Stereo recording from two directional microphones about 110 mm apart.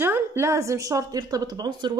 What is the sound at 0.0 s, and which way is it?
A woman's voice, 20° right (ahead or behind).